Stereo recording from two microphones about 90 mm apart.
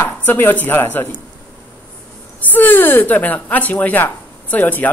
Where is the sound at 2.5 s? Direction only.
20° left (ahead or behind).